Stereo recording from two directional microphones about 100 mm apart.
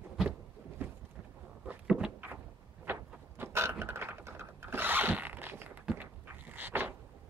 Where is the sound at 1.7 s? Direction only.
5° right (ahead or behind).